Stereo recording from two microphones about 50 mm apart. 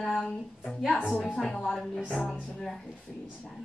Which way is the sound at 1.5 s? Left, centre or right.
Centre.